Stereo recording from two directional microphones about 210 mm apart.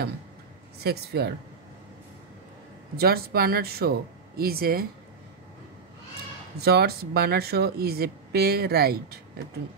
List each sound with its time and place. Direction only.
0.7 s speech: 50° right (ahead or behind)
3.0 s speech: 45° right (ahead or behind)
6.6 s speech: 50° right (ahead or behind)